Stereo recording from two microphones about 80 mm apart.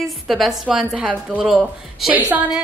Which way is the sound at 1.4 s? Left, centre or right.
Centre.